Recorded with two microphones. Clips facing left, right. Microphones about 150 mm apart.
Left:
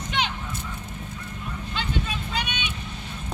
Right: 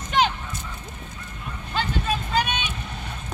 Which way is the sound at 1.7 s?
45° right (ahead or behind).